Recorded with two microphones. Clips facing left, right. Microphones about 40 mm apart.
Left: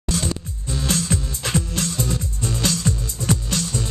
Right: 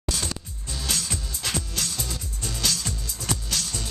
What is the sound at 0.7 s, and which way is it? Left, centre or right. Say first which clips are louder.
Music: left 7 dB; left.